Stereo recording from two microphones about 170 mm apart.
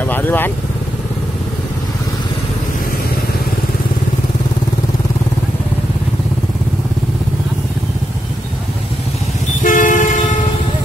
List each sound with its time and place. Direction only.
0.0 s vehicle: 10° left (ahead or behind)
9.6 s vehicle: 50° left (ahead or behind)